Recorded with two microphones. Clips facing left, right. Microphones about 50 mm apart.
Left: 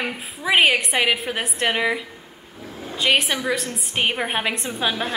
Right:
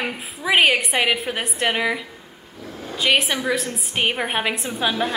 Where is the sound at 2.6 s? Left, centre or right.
Centre.